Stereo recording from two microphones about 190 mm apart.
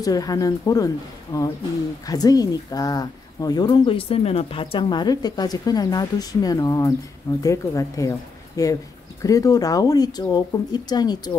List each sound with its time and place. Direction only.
0.0 s a woman's voice: 20° left (ahead or behind)